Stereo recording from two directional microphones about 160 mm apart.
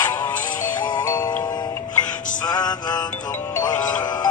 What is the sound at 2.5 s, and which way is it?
Music, 25° left (ahead or behind).